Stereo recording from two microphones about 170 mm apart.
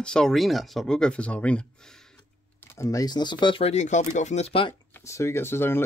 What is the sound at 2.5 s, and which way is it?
Speech, 15° left (ahead or behind).